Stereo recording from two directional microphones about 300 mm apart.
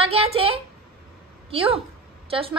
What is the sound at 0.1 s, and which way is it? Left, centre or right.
A woman's voice, centre.